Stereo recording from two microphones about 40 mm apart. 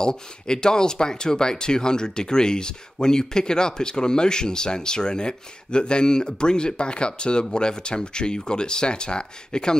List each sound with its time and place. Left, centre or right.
0.0 s speech: centre